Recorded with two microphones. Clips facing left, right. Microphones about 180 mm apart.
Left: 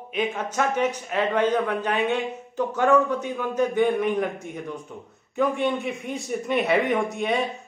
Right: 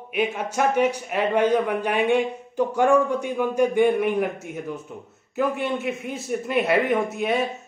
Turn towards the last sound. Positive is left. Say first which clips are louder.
# right 1 dB
turn(degrees=0)  # may be behind; listen again after turning